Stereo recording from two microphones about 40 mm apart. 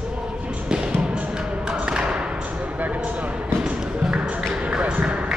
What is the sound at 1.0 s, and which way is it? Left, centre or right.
Music, right.